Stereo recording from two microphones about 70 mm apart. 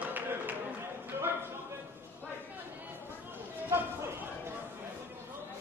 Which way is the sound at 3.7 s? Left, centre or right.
Right.